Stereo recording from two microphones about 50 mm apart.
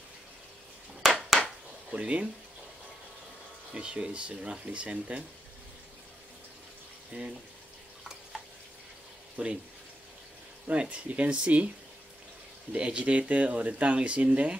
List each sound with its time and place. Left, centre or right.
1.0 s a sound: centre
1.9 s speech: right
3.7 s speech: centre
7.1 s speech: right
10.7 s speech: right
12.7 s speech: right